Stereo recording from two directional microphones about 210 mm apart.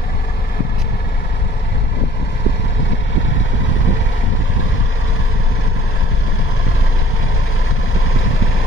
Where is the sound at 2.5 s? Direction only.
55° left (ahead or behind).